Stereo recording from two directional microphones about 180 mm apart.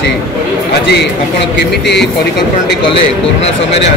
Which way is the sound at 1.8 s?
70° left (ahead or behind).